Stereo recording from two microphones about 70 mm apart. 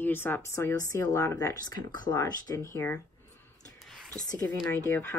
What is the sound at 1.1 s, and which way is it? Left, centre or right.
Speech, left.